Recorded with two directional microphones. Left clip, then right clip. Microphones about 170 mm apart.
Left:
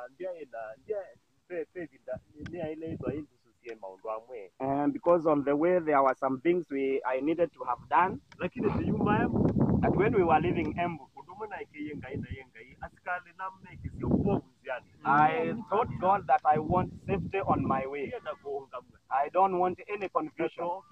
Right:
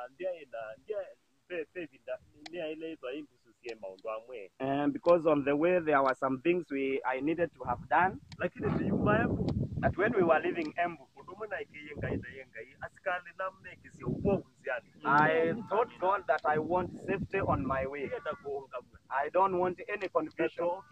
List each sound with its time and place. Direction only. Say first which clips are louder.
0.0 s speech: right 1 dB; 30° right (ahead or behind)
4.0 s speech: left 3 dB; 25° right (ahead or behind)